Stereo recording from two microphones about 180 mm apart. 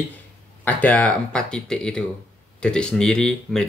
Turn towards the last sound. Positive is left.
turn(degrees=5)  # may be behind; listen again after turning